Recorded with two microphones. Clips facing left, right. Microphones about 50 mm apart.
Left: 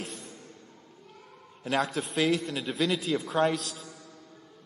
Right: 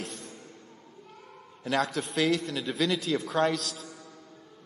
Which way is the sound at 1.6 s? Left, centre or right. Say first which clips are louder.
Even; centre.